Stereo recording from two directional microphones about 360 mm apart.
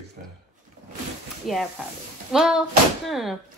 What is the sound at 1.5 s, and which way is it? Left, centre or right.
Speech, centre.